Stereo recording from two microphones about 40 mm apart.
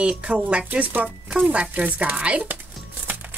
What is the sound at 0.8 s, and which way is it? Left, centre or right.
Speech, right.